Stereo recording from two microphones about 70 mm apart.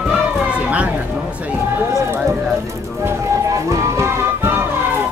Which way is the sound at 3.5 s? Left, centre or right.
Right.